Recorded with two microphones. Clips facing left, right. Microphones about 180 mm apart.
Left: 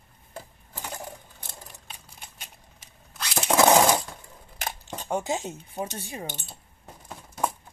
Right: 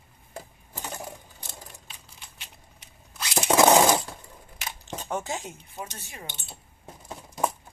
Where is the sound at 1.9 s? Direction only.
50° left (ahead or behind).